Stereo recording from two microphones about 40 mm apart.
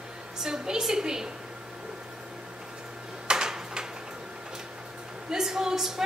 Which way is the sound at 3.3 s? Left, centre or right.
Centre.